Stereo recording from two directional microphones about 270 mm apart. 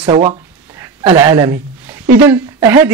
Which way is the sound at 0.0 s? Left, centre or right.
Centre.